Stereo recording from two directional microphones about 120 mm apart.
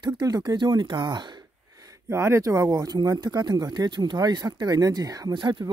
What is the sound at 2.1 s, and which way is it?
Speech, 20° right (ahead or behind).